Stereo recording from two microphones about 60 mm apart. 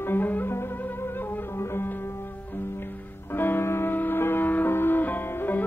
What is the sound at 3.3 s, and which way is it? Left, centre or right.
Music, left.